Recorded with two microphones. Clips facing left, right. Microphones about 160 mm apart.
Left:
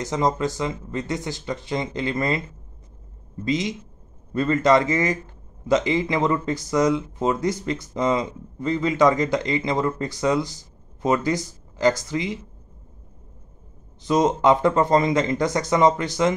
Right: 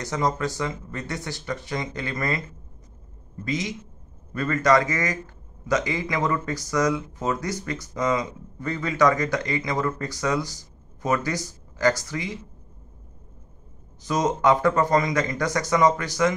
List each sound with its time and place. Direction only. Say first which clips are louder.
0.0 s speech: left 3 dB; 20° left (ahead or behind)
3.4 s speech: left 4 dB; 20° left (ahead or behind)
14.0 s speech: left 3 dB; 25° left (ahead or behind)